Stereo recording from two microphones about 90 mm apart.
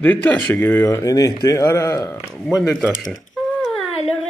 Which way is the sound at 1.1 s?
40° left (ahead or behind).